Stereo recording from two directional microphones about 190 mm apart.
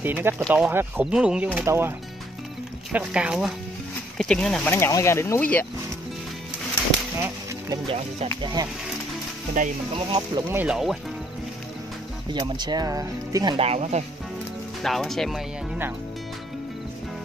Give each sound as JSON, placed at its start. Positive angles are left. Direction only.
{"t": 0.0, "sound": "speech", "side_deg": -10}
{"t": 7.7, "sound": "speech", "side_deg": -30}
{"t": 9.9, "sound": "speech", "side_deg": -25}
{"t": 10.5, "sound": "speech", "side_deg": -5}
{"t": 12.3, "sound": "speech", "side_deg": -25}
{"t": 13.6, "sound": "speech", "side_deg": -35}
{"t": 14.8, "sound": "speech", "side_deg": 0}